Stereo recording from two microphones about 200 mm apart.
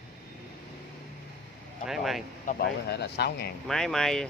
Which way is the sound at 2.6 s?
55° left (ahead or behind).